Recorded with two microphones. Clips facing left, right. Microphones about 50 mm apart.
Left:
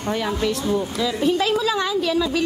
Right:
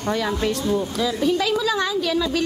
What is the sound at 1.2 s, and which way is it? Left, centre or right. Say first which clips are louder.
Speech: left 1 dB; left.